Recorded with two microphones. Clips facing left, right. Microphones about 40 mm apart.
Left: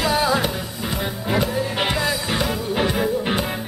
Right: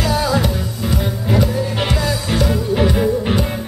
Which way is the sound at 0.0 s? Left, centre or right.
Left.